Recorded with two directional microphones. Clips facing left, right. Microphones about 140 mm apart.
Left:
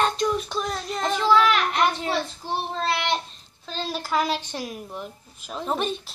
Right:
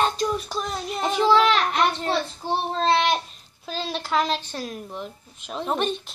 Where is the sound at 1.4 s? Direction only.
30° right (ahead or behind).